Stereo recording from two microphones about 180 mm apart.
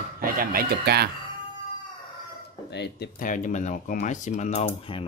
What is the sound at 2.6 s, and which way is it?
Speech, 70° left (ahead or behind).